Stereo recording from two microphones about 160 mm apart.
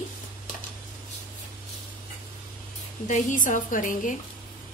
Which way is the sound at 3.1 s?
50° left (ahead or behind).